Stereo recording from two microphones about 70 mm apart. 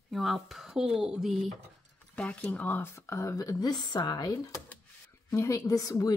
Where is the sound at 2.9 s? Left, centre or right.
Left.